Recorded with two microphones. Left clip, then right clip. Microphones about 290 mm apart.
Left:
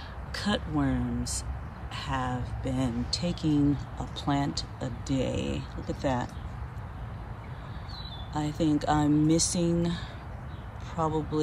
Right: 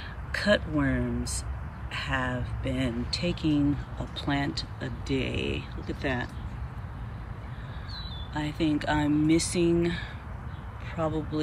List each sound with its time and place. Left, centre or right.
0.3 s speech: centre
8.3 s speech: centre